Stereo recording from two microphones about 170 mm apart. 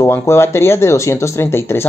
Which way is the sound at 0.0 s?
15° left (ahead or behind).